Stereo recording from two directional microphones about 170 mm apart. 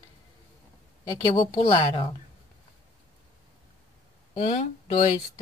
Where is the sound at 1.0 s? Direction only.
30° left (ahead or behind).